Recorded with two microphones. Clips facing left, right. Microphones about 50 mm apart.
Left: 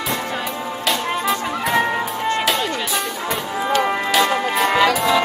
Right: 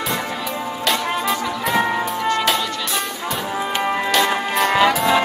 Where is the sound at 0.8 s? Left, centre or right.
Centre.